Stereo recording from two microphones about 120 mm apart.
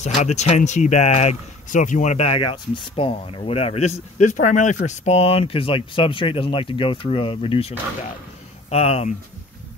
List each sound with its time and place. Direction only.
0.0 s speech: 70° left (ahead or behind)